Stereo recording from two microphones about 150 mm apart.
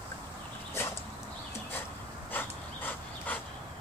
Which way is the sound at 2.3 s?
10° left (ahead or behind).